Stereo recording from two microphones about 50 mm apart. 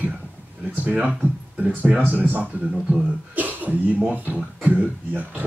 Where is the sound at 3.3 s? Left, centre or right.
Right.